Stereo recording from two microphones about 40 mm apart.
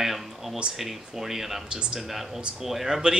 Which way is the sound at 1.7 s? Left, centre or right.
Right.